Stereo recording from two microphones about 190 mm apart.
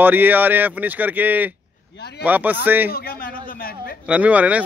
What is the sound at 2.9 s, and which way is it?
Speech, 50° left (ahead or behind).